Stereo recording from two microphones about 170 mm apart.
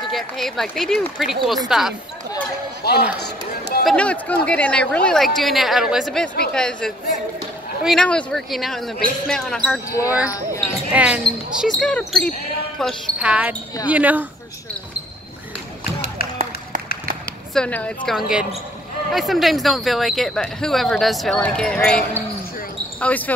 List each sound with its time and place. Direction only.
0.1 s speech: centre (ahead or behind)
2.8 s speech: 75° left (ahead or behind)
3.8 s speech: 5° left (ahead or behind)
10.1 s speech: 10° right (ahead or behind)
17.6 s speech: 10° left (ahead or behind)